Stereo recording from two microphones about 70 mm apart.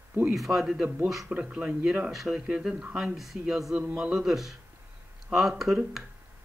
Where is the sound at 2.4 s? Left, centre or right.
Centre.